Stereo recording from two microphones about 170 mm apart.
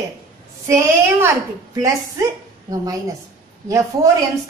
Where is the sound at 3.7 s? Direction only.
20° right (ahead or behind).